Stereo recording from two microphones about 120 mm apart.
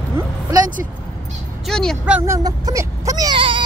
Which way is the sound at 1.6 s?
5° left (ahead or behind).